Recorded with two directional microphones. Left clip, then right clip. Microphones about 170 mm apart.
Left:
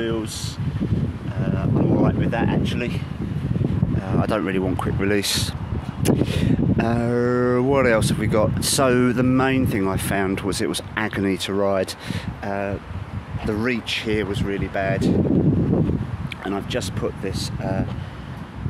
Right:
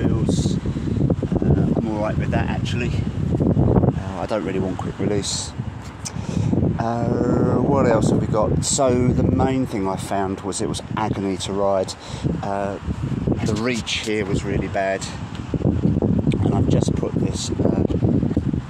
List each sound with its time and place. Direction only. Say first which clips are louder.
2.0 s speech: left 1 dB; 5° left (ahead or behind)
4.2 s speech: left 2 dB; 45° left (ahead or behind)
6.4 s speech: left 1 dB; 45° left (ahead or behind)
7.1 s mantra: left 1 dB; 90° left
7.7 s speech: even; 45° left (ahead or behind)
13.7 s speech: even; 5° left (ahead or behind)
16.3 s a sound: right 6 dB; 10° left (ahead or behind)